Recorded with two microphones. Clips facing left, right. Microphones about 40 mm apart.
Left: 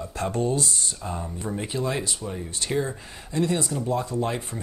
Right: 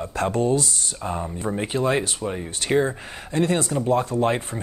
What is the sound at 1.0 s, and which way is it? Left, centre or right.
Speech, right.